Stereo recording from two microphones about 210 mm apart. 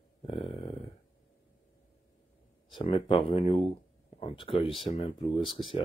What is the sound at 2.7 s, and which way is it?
Speech, 25° left (ahead or behind).